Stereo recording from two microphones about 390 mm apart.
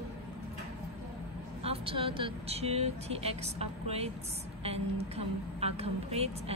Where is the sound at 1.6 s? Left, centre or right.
Centre.